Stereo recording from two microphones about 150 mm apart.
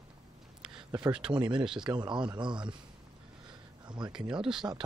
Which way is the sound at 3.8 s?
30° right (ahead or behind).